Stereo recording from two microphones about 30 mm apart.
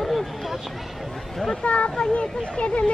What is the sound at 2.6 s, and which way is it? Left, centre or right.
Speech, left.